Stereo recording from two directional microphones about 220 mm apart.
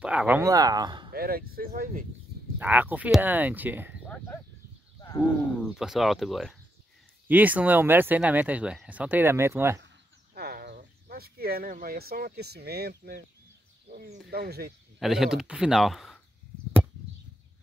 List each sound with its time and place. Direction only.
0.0 s speech: 5° right (ahead or behind)
1.1 s a sound: 45° right (ahead or behind)
1.5 s speech: 40° right (ahead or behind)
2.6 s speech: 10° right (ahead or behind)
5.6 s speech: centre (ahead or behind)
10.3 s speech: 45° right (ahead or behind)
14.3 s speech: 45° right (ahead or behind)
15.0 s speech: centre (ahead or behind)